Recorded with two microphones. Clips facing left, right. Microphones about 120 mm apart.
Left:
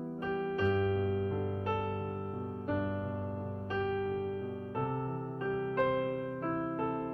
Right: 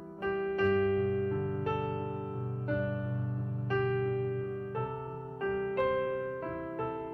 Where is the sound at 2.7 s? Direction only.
50° left (ahead or behind).